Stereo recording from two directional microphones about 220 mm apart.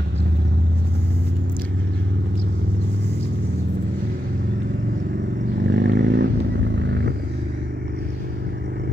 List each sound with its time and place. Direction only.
5.6 s vehicle: 50° right (ahead or behind)